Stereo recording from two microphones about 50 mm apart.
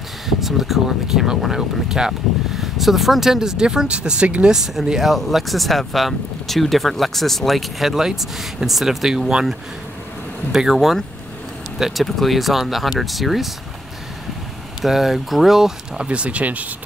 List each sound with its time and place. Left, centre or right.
0.3 s speech: centre
14.8 s speech: centre
16.0 s speech: right